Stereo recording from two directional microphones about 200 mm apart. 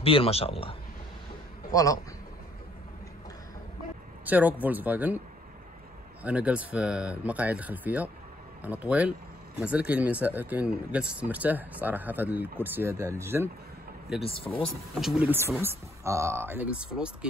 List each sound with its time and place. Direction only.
0.0 s speech: 30° left (ahead or behind)
1.7 s speech: 15° left (ahead or behind)
4.3 s speech: 10° right (ahead or behind)
6.2 s speech: 5° right (ahead or behind)
14.2 s speech: 25° left (ahead or behind)
15.2 s speech: 10° right (ahead or behind)